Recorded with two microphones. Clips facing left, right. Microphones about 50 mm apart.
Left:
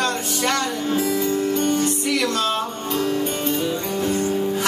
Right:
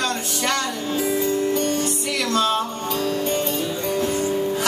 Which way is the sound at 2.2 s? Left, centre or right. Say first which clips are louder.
Right 1 dB; centre.